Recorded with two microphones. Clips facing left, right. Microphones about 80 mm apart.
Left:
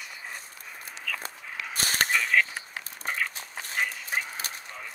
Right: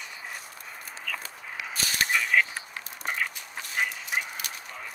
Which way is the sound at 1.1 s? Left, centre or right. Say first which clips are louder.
Even; centre.